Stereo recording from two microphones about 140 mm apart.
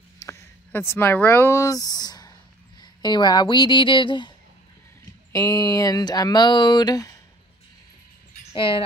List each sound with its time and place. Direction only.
0.7 s speech: 15° left (ahead or behind); by 4.3 s 35° left (ahead or behind)
5.3 s speech: 25° left (ahead or behind)
8.5 s speech: 40° left (ahead or behind)